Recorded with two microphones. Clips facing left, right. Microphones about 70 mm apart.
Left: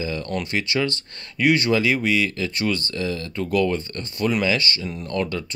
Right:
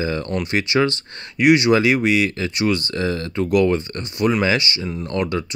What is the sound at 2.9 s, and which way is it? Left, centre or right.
Speech, right.